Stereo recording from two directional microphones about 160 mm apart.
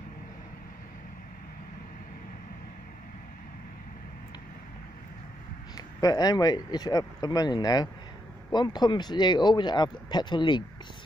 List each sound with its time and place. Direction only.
5.8 s speech: 20° left (ahead or behind)